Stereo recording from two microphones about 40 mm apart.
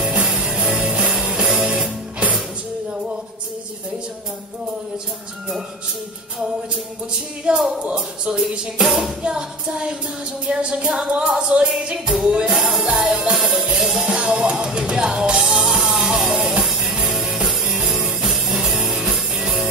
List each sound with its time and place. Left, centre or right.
0.0 s music: right
0.5 s music: centre
0.7 s music: right
1.3 s music: centre
7.5 s music: right
8.8 s music: centre
9.2 s music: right
14.0 s music: right
16.3 s music: right
16.8 s music: centre
17.1 s music: centre
17.6 s music: centre